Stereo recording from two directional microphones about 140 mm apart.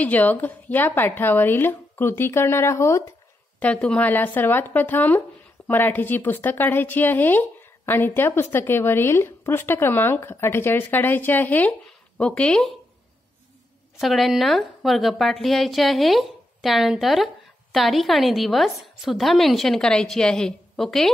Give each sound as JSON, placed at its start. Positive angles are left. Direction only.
{"t": 0.0, "sound": "speech", "side_deg": 10}
{"t": 3.5, "sound": "speech", "side_deg": 10}
{"t": 13.9, "sound": "a woman's voice", "side_deg": 0}